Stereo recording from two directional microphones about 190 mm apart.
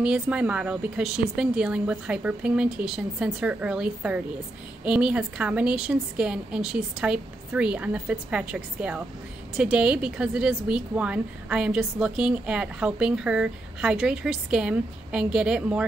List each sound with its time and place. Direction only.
0.0 s a woman's voice: 5° right (ahead or behind)